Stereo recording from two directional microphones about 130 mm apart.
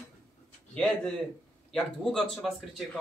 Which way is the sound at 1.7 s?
5° left (ahead or behind).